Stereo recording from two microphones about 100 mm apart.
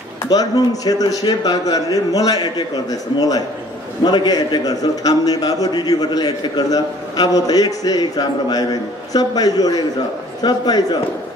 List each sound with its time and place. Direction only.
0.3 s a man's voice: 40° left (ahead or behind)